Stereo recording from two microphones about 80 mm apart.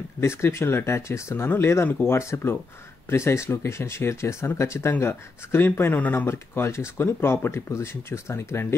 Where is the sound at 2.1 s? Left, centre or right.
Left.